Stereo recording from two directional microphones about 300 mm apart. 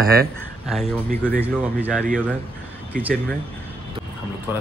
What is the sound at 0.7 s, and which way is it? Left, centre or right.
Speech, centre.